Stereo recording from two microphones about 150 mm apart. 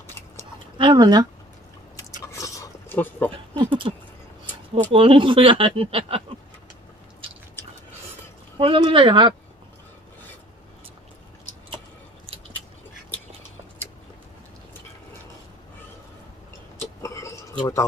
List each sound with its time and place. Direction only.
0.7 s speech: 30° right (ahead or behind)
2.3 s a sound: 20° left (ahead or behind)
3.5 s speech: 35° right (ahead or behind)
4.9 s speech: 35° right (ahead or behind)
8.5 s speech: 35° right (ahead or behind)
17.0 s a sound: 20° left (ahead or behind)